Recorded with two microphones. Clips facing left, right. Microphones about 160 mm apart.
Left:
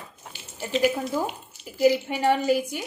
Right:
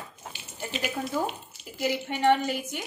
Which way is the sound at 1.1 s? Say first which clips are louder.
Left 2 dB; 10° left (ahead or behind).